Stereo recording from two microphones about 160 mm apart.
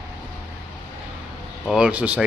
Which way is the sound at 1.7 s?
5° right (ahead or behind).